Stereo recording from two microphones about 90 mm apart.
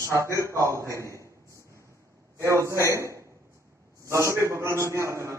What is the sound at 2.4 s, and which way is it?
A man's voice, 35° right (ahead or behind).